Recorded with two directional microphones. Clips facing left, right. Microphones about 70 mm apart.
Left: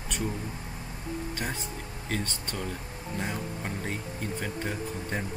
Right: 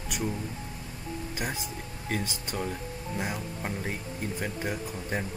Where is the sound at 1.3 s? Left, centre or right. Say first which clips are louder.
Even; centre.